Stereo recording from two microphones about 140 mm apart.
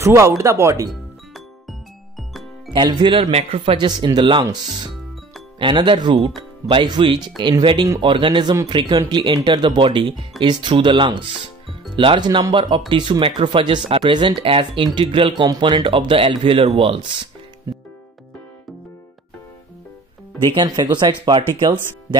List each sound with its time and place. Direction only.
0.0 s speech: 20° right (ahead or behind)
0.8 s music: centre (ahead or behind)
2.7 s speech: 35° right (ahead or behind)
3.7 s speech: 30° right (ahead or behind)
20.4 s speech: 30° right (ahead or behind)